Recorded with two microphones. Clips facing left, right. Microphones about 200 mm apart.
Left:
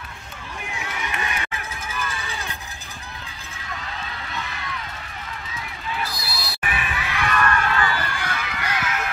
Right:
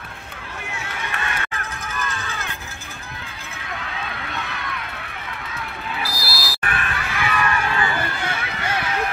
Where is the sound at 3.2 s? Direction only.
60° right (ahead or behind).